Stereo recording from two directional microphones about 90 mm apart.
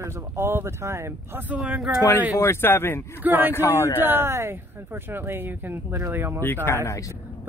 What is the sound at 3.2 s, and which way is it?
Speech, 20° right (ahead or behind).